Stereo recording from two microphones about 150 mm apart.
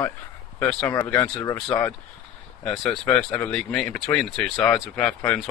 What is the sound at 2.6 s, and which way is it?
Speech, centre (ahead or behind).